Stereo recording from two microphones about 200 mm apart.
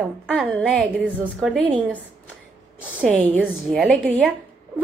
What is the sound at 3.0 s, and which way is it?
A woman's voice, 5° left (ahead or behind).